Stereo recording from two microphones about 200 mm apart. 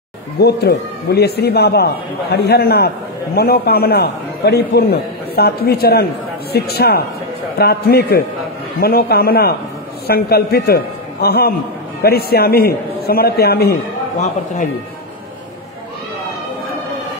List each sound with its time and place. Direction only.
0.4 s a man's voice: 55° left (ahead or behind)